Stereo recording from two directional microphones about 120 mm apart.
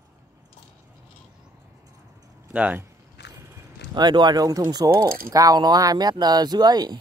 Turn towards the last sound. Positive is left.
turn(degrees=-35)  # may be behind; listen again after turning